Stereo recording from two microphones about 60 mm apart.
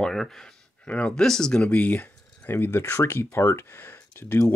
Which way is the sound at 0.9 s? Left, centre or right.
Centre.